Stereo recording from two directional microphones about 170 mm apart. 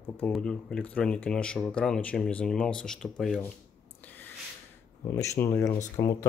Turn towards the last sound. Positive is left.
turn(degrees=20)  # may be behind; listen again after turning